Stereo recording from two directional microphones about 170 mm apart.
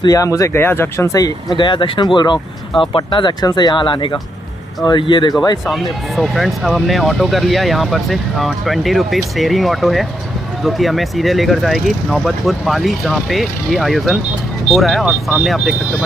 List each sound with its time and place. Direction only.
0.0 s speech: 20° left (ahead or behind)
5.7 s speech: centre (ahead or behind)